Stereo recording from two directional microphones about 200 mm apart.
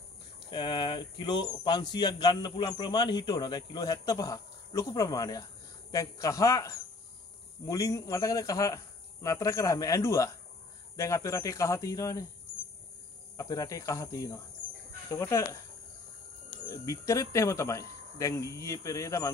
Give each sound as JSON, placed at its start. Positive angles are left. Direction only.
{"t": 0.5, "sound": "speech", "side_deg": 25}
{"t": 13.4, "sound": "speech", "side_deg": 15}
{"t": 16.6, "sound": "speech", "side_deg": 15}